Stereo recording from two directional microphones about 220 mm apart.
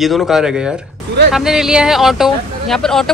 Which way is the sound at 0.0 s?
Centre (ahead or behind).